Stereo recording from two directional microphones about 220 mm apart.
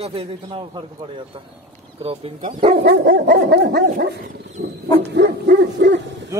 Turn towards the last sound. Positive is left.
turn(degrees=-50)  # may be behind; listen again after turning